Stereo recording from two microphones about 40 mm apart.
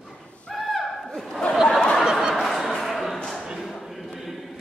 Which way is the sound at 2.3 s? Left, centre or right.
Centre.